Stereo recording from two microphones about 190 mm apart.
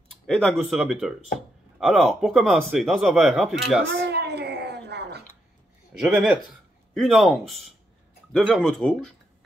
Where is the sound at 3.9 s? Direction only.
60° right (ahead or behind).